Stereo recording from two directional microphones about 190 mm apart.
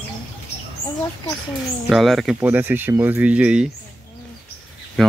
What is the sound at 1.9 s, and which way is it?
Speech, centre (ahead or behind).